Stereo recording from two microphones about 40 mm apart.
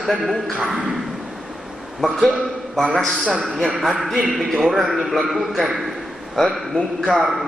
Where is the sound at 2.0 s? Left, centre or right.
Centre.